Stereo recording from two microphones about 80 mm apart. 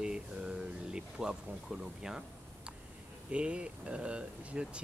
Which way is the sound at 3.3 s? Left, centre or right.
Centre.